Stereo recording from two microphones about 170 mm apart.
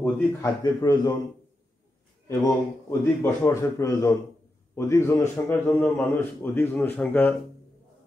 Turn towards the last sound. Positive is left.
turn(degrees=10)  # may be behind; listen again after turning